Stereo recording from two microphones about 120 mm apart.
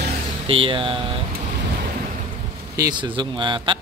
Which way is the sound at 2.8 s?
40° right (ahead or behind).